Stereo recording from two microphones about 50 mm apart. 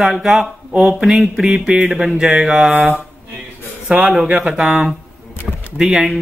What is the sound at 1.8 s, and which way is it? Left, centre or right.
Mantra, centre.